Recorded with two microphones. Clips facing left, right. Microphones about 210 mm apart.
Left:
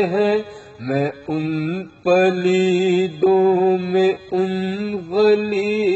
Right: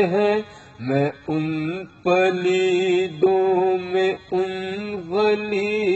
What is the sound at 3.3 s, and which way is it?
Mantra, 40° left (ahead or behind).